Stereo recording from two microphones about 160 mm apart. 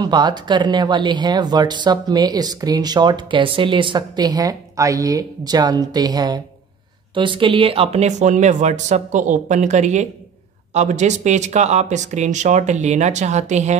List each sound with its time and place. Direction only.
0.0 s speech: 25° right (ahead or behind); by 13.7 s 45° right (ahead or behind)